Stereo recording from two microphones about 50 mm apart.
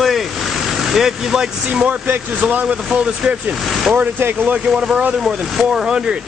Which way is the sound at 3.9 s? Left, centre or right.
Right.